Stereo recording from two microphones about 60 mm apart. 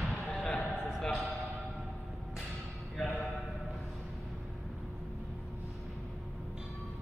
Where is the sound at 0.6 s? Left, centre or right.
Centre.